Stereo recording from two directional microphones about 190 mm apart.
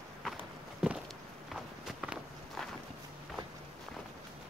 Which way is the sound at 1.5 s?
Centre (ahead or behind).